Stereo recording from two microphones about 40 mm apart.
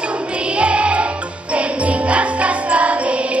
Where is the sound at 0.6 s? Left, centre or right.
Right.